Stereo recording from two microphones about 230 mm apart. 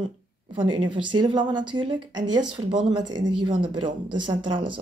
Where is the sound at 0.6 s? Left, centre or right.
Centre.